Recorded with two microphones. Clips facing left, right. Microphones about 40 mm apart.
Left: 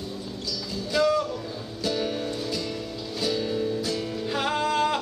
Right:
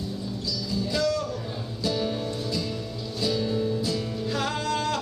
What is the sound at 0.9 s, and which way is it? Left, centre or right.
Music, centre.